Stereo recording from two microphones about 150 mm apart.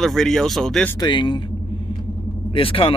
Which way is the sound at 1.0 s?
30° left (ahead or behind).